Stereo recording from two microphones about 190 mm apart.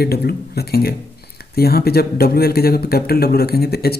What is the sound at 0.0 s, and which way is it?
Speech, 55° left (ahead or behind).